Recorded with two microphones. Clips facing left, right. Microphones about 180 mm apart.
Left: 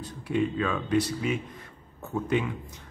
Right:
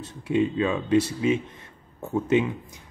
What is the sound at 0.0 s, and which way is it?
A man's voice, 25° right (ahead or behind).